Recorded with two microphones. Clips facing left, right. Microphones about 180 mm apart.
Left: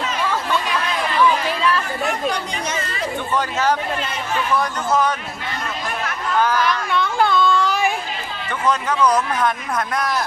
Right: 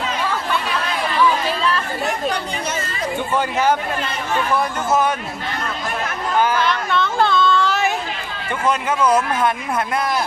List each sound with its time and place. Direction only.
3.3 s speech: 15° right (ahead or behind)
6.5 s speech: 25° right (ahead or behind)
6.9 s a sound: 10° left (ahead or behind)
9.0 s speech: 25° right (ahead or behind)